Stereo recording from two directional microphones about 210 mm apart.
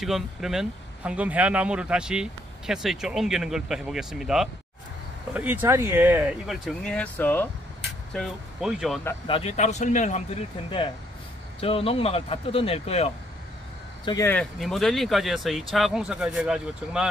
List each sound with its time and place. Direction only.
0.0 s speech: centre (ahead or behind)
9.3 s speech: 30° left (ahead or behind)
14.0 s speech: 15° left (ahead or behind); by 17.1 s 5° right (ahead or behind)